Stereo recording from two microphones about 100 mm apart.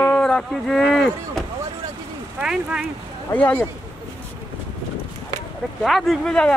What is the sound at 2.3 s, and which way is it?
Speech, 5° right (ahead or behind).